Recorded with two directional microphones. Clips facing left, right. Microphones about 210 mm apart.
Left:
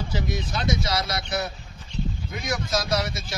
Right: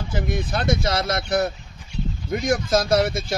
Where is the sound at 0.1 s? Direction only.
55° right (ahead or behind).